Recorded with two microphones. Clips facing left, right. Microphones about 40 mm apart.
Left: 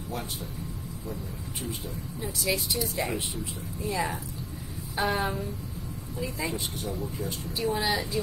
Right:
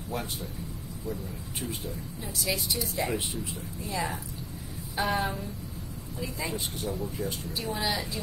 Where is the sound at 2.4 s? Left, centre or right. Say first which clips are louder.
Left 2 dB; centre.